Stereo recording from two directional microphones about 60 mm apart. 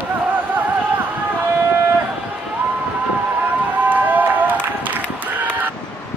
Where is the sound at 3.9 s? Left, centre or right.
Right.